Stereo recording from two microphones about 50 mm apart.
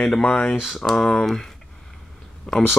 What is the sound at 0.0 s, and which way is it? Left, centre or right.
Speech, left.